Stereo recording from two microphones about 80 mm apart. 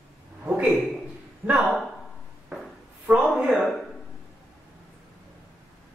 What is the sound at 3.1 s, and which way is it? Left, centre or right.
Speech, centre.